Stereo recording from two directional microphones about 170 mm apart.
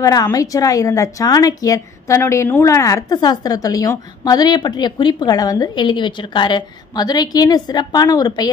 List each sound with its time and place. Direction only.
0.0 s a woman's voice: 20° left (ahead or behind)